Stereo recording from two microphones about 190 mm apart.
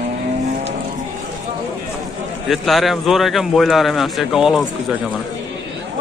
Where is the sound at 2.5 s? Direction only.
Centre (ahead or behind).